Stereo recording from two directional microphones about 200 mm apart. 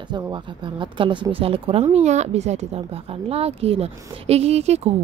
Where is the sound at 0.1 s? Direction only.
25° right (ahead or behind).